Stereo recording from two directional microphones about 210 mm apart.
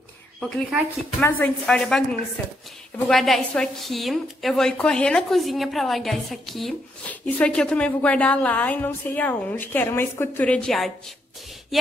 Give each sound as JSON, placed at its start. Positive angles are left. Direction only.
{"t": 0.4, "sound": "a woman's voice", "side_deg": 0}
{"t": 3.1, "sound": "a woman's voice", "side_deg": 0}